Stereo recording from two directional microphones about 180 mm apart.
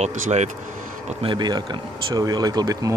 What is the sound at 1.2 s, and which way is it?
Speech, 25° right (ahead or behind).